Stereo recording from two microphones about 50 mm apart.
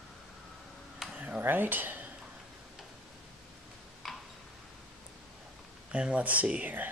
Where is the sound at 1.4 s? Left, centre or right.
Right.